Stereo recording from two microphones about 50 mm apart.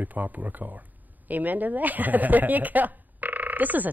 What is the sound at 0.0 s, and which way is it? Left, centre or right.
Speech, right.